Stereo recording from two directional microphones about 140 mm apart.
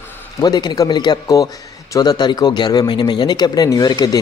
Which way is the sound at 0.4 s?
30° left (ahead or behind).